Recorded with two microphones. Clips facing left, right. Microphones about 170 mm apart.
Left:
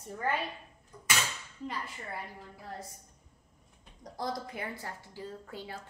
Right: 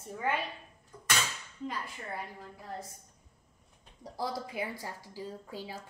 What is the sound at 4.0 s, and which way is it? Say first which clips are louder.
A woman's voice: even; 10° right (ahead or behind).